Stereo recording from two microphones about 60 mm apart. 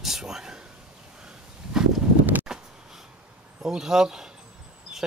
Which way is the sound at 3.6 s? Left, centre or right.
Centre.